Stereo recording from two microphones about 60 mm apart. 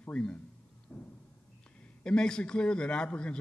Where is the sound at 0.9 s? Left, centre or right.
Left.